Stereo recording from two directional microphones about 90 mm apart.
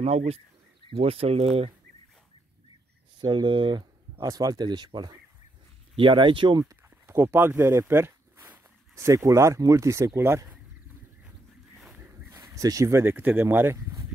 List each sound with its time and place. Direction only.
0.8 s speech: 90° right
3.2 s speech: 65° right (ahead or behind)
4.2 s speech: 40° right (ahead or behind)
5.9 s speech: 65° right (ahead or behind)
7.1 s speech: 25° right (ahead or behind)
7.9 s a sound: 25° right (ahead or behind)
8.9 s speech: 35° right (ahead or behind)
11.9 s a sound: 20° right (ahead or behind)
12.4 s speech: 40° right (ahead or behind)
13.0 s speech: 20° right (ahead or behind)